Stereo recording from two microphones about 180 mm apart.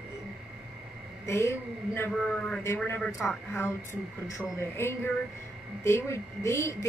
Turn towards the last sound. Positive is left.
turn(degrees=15)  # may be behind; listen again after turning